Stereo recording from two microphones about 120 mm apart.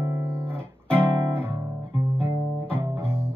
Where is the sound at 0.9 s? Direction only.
20° right (ahead or behind).